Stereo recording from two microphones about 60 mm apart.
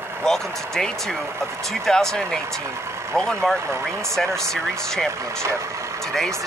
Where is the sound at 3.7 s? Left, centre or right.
Right.